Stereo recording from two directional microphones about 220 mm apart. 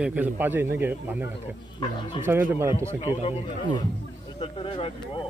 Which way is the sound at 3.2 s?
25° left (ahead or behind).